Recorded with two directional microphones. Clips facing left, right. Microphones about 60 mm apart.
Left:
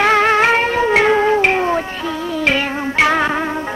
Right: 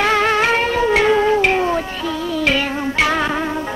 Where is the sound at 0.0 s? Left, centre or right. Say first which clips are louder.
Left 3 dB; left.